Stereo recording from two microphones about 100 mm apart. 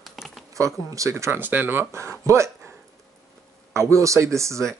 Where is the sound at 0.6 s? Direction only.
30° right (ahead or behind).